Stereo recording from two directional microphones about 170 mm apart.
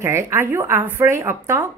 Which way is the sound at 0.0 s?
15° right (ahead or behind).